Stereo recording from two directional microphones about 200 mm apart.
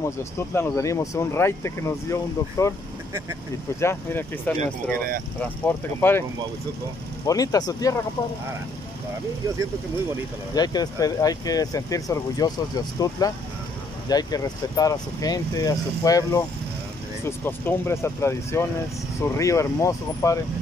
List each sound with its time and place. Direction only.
0.0 s speech: 15° left (ahead or behind)
3.8 s speech: 10° left (ahead or behind)
7.2 s speech: 20° left (ahead or behind)
10.5 s speech: 20° left (ahead or behind)